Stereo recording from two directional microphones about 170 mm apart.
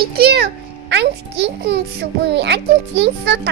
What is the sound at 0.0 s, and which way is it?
A child's voice, 65° right (ahead or behind).